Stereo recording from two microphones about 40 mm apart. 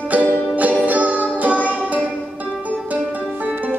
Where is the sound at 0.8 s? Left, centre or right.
Right.